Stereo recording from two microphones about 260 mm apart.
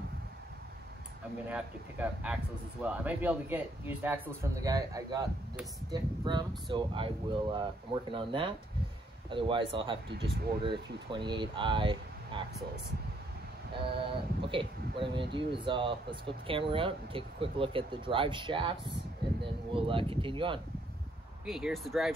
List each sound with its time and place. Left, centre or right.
1.5 s a man's voice: centre
8.1 s speech: centre
10.0 s speech: right
10.6 s speech: centre
13.7 s speech: centre
21.5 s speech: centre